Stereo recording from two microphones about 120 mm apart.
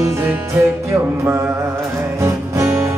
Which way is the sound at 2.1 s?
25° right (ahead or behind).